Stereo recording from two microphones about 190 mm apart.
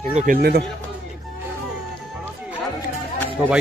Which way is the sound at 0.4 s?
55° right (ahead or behind).